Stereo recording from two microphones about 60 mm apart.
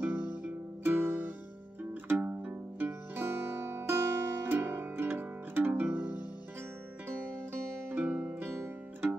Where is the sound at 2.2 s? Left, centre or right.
Right.